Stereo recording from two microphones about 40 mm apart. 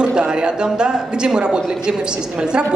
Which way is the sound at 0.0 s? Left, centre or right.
Right.